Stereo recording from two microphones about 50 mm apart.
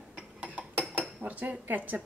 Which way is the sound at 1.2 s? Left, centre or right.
Right.